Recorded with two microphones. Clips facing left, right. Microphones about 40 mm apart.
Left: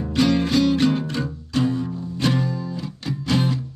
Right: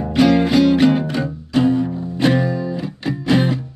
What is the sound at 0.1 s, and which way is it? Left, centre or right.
Music, centre.